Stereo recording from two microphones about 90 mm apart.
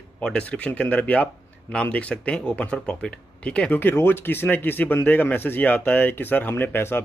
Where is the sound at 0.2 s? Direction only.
10° left (ahead or behind).